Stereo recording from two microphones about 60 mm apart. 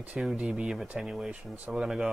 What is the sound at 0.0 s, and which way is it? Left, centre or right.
Speech, centre.